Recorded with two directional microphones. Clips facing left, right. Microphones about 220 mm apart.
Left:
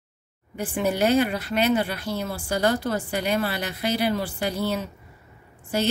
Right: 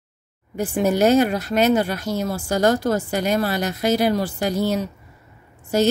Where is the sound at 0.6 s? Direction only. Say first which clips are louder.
Right 5 dB; 45° right (ahead or behind).